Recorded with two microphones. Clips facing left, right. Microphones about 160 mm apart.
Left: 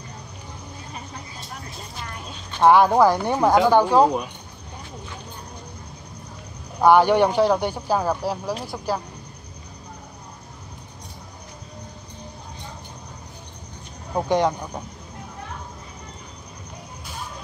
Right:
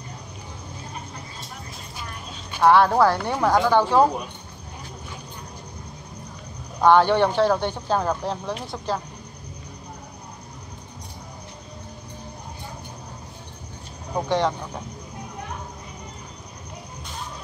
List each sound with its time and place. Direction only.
2.6 s speech: 15° left (ahead or behind)
6.8 s speech: 10° left (ahead or behind)
14.1 s speech: 20° left (ahead or behind)